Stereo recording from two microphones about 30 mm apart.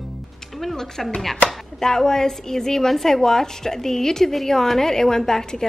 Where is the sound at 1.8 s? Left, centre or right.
Centre.